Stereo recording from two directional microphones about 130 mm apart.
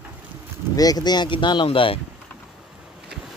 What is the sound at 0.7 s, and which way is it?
Speech, 30° left (ahead or behind).